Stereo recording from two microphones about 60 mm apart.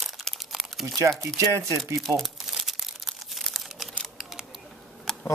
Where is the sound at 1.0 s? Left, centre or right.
Right.